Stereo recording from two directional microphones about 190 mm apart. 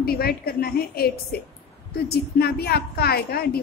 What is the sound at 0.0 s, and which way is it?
A woman's voice, 55° left (ahead or behind).